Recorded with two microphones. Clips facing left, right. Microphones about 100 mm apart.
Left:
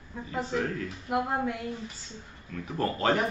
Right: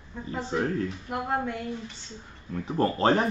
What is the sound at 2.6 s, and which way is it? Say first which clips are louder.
Speech: right 4 dB; 30° right (ahead or behind).